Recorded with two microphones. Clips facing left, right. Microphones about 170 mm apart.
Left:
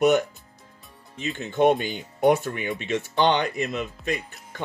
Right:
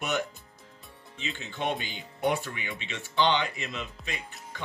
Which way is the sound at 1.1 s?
50° left (ahead or behind).